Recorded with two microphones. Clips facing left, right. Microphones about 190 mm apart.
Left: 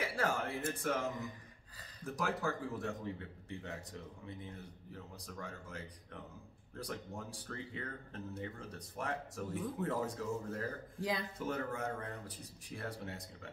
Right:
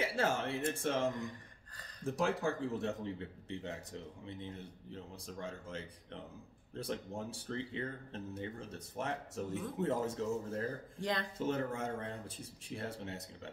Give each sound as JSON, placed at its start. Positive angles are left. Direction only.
{"t": 0.0, "sound": "speech", "side_deg": -25}
{"t": 2.0, "sound": "speech", "side_deg": -25}
{"t": 11.0, "sound": "speech", "side_deg": 5}
{"t": 11.3, "sound": "speech", "side_deg": -25}